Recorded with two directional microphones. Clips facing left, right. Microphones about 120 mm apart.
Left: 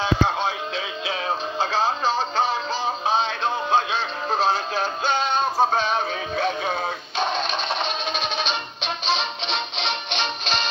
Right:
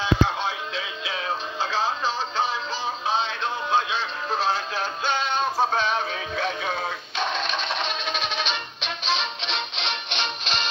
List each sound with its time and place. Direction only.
1.6 s music: 45° left (ahead or behind)